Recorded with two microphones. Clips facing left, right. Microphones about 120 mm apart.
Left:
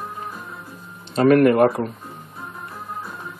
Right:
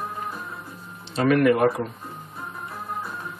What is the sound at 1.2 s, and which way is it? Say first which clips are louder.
Speech: left 5 dB; 45° left (ahead or behind).